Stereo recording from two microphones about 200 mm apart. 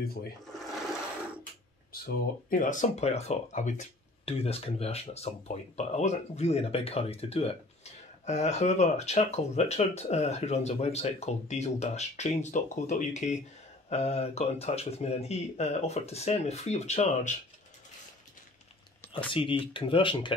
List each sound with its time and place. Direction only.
1.9 s a sound: 50° left (ahead or behind)
2.5 s speech: 40° left (ahead or behind)
19.1 s speech: 25° left (ahead or behind)